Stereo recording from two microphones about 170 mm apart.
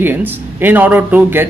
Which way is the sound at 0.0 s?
10° right (ahead or behind).